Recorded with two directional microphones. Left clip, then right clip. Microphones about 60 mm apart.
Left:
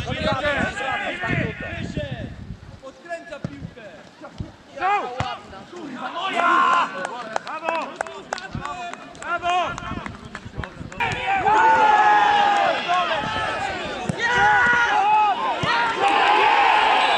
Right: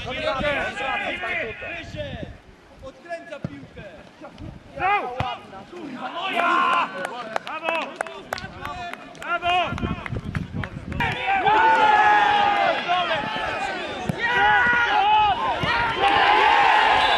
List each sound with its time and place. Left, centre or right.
0.0 s a sound: centre
1.8 s a sound: right
4.7 s chop: right
5.1 s a sound: centre
7.4 s run: right
13.2 s run: centre
13.5 s a sound: right
14.1 s run: centre
15.0 s run: right
15.3 s run: right
15.6 s run: centre
16.2 s crowd: right